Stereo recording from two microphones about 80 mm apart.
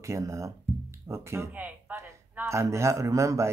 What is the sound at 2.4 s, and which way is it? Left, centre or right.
Speech, right.